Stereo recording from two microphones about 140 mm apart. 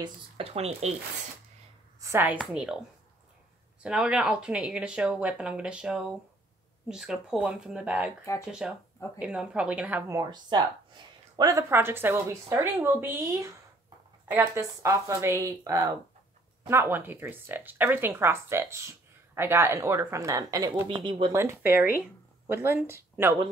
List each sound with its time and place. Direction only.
0.4 s speech: 45° right (ahead or behind)
2.0 s speech: 20° right (ahead or behind)
3.8 s speech: 5° right (ahead or behind)
10.0 s speech: 25° right (ahead or behind)
20.9 s speech: 35° right (ahead or behind)
21.3 s speech: 20° right (ahead or behind)